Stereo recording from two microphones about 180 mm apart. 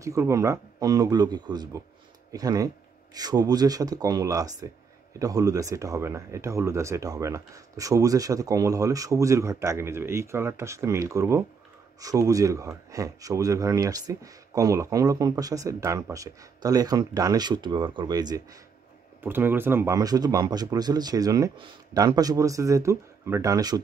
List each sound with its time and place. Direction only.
0.0 s speech: 15° right (ahead or behind)